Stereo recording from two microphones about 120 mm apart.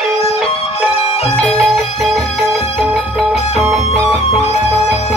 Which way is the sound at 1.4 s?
5° left (ahead or behind).